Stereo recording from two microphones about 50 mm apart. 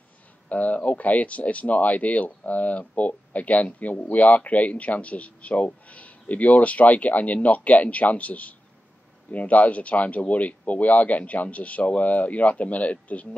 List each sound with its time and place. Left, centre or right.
0.5 s speech: left